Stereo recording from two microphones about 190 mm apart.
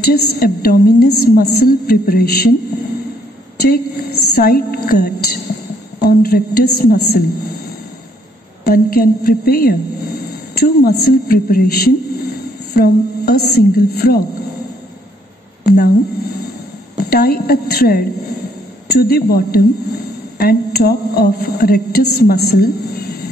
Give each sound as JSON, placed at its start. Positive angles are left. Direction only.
{"t": 0.0, "sound": "a woman's voice", "side_deg": 55}
{"t": 3.6, "sound": "a woman's voice", "side_deg": 55}
{"t": 8.6, "sound": "a woman's voice", "side_deg": 50}
{"t": 15.6, "sound": "a woman's voice", "side_deg": 55}